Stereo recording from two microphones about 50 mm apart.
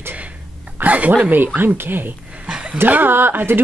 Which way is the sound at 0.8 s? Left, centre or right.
Right.